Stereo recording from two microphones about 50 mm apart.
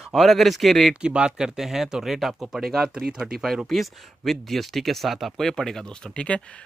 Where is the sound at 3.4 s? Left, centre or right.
Centre.